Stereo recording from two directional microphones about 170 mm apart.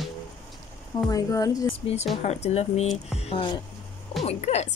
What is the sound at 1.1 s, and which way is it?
Speech, 20° left (ahead or behind).